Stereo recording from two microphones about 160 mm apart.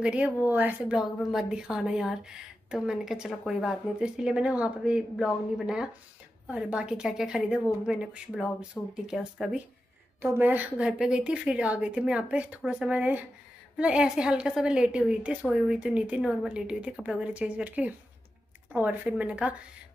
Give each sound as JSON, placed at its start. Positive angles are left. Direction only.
{"t": 0.0, "sound": "a woman's voice", "side_deg": -5}